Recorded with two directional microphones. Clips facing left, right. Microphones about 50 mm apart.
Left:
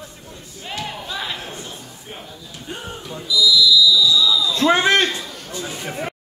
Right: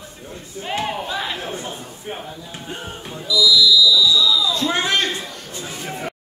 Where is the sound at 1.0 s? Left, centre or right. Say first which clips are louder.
Right 3 dB; centre.